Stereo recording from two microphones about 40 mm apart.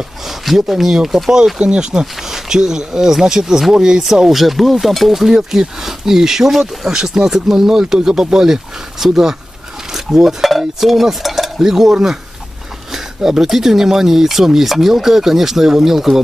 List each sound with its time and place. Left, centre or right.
0.3 s speech: centre
1.3 s speech: right
4.0 s stir: centre
5.3 s speech: centre
9.9 s stir: centre
11.5 s speech: centre